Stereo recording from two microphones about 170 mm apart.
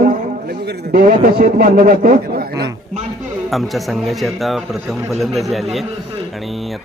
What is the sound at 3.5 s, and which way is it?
Speech, centre (ahead or behind).